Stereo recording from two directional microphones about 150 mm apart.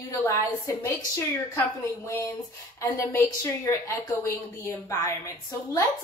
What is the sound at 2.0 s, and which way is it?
A woman's voice, 20° left (ahead or behind).